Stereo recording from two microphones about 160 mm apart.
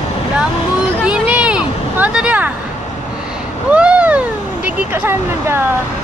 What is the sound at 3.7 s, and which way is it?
Cat, 10° right (ahead or behind).